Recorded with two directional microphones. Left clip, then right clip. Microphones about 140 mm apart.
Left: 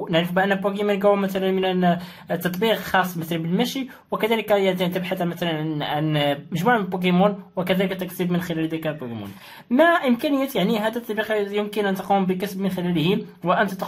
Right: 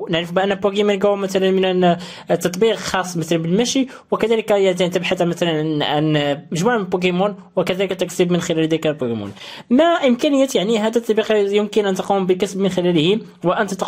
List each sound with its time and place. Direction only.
0.1 s speech: 40° right (ahead or behind)